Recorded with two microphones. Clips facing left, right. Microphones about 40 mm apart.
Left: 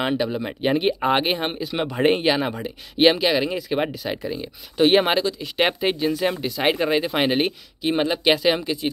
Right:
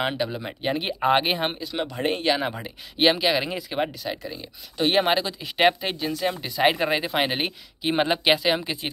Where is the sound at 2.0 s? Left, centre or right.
Left.